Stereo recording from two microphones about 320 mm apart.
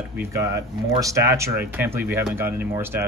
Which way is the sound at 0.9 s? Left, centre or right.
Centre.